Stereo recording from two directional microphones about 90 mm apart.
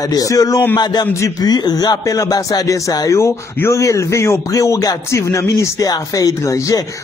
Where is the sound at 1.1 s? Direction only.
40° left (ahead or behind).